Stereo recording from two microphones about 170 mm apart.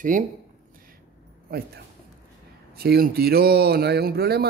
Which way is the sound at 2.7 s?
65° right (ahead or behind).